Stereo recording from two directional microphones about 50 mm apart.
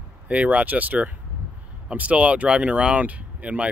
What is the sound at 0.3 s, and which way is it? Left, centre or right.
Speech, right.